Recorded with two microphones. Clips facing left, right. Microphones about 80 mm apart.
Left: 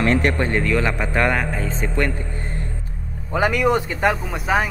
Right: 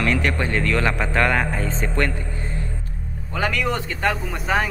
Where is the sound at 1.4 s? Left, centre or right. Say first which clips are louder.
Even; centre.